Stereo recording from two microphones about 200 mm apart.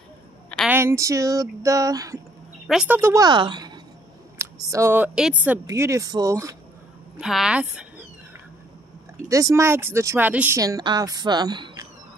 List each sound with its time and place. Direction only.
0.7 s speech: 10° right (ahead or behind)
2.6 s a woman's voice: 5° right (ahead or behind)
7.2 s a woman's voice: 5° right (ahead or behind)
9.3 s speech: 15° right (ahead or behind)